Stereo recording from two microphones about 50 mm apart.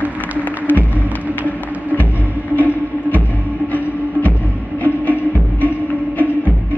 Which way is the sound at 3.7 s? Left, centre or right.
Left.